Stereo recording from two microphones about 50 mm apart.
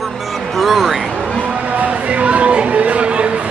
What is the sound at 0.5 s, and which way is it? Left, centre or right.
Speech, centre.